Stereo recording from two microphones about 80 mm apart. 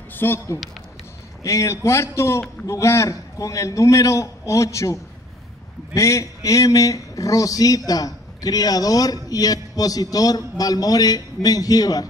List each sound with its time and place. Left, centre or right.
0.1 s a sound: left
1.4 s a man's voice: left
5.9 s a man's voice: left